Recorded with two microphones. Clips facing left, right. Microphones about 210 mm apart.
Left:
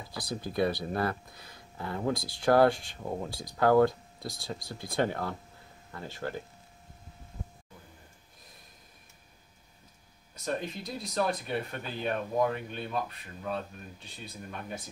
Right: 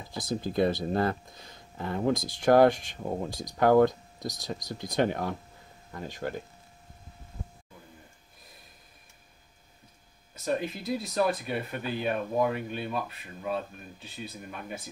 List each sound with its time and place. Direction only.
0.4 s speech: 25° right (ahead or behind)
10.3 s speech: 5° right (ahead or behind)